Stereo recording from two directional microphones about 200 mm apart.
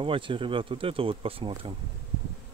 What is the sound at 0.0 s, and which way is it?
Speech, 25° right (ahead or behind).